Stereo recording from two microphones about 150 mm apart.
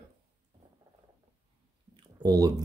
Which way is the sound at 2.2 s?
25° right (ahead or behind).